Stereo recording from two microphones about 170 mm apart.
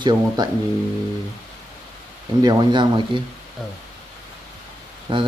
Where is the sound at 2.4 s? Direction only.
25° right (ahead or behind).